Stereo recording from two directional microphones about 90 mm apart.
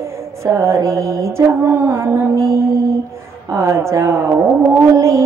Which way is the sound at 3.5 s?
30° right (ahead or behind).